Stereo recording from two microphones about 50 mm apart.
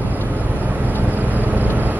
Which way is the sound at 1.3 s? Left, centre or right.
Right.